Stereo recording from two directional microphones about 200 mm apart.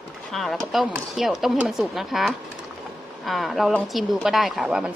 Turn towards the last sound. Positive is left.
turn(degrees=-5)  # may be behind; listen again after turning